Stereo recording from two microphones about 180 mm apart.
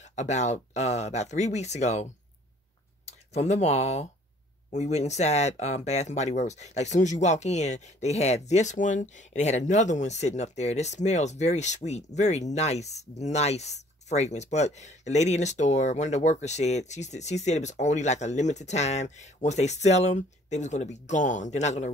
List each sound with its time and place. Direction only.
0.0 s speech: 40° left (ahead or behind)